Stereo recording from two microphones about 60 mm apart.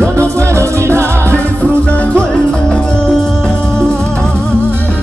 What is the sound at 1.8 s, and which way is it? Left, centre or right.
Music, left.